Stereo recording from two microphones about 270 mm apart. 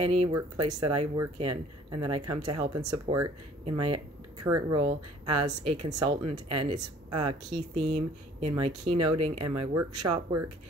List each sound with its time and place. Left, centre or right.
0.0 s speech: right